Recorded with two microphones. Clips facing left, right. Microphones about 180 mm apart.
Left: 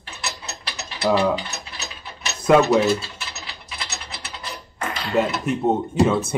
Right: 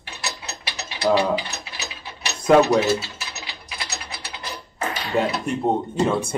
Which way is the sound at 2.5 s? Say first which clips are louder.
Even; centre (ahead or behind).